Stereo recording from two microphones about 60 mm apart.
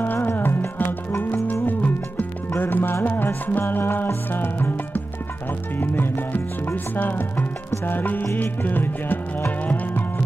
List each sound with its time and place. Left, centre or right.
0.0 s music: left